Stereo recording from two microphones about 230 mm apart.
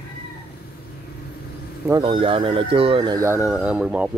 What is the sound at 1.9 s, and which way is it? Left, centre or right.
Speech, right.